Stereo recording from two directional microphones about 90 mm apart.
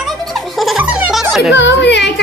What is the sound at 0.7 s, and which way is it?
Baby laughter, 15° right (ahead or behind).